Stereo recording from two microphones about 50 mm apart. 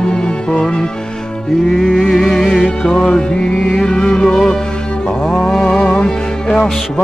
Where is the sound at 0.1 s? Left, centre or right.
Centre.